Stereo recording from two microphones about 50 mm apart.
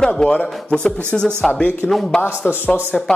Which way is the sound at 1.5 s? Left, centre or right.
Left.